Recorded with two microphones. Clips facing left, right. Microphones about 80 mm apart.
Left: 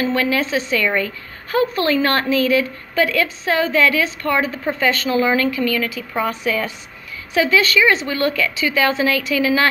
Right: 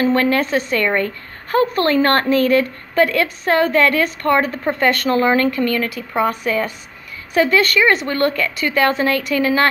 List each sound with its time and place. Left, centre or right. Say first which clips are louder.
0.0 s a woman's voice: right 3 dB; right